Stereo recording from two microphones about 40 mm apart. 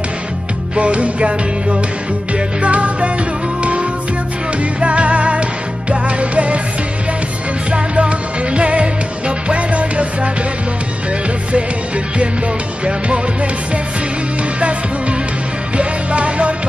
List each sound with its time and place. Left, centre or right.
0.7 s music: right
4.7 s music: right
7.7 s music: right
14.6 s music: right